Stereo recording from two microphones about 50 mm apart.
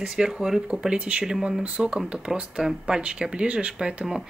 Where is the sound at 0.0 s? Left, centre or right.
Centre.